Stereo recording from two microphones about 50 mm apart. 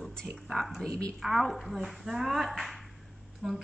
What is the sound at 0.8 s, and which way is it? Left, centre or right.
Speech, centre.